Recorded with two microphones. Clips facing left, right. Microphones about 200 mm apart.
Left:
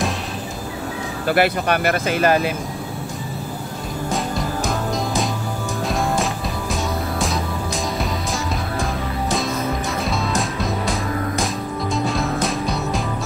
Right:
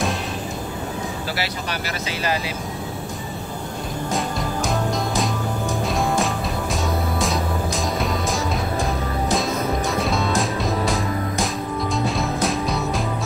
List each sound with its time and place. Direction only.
1.2 s speech: 55° left (ahead or behind)
4.1 s music: centre (ahead or behind)
10.0 s music: centre (ahead or behind)
11.9 s music: centre (ahead or behind)